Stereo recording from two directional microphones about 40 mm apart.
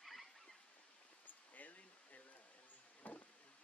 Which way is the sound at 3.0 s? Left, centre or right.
Left.